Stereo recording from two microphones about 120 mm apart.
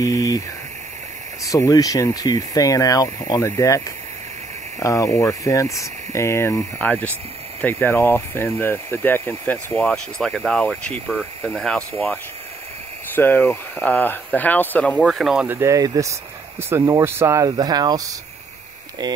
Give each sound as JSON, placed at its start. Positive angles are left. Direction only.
{"t": 0.0, "sound": "speech", "side_deg": 30}
{"t": 1.4, "sound": "speech", "side_deg": 30}
{"t": 13.1, "sound": "speech", "side_deg": 15}
{"t": 15.4, "sound": "speech", "side_deg": -20}